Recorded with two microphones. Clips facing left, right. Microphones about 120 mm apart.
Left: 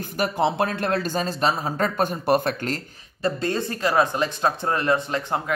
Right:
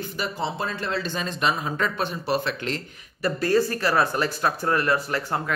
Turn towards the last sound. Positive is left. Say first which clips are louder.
# left 1 dB
turn(degrees=20)  # may be behind; listen again after turning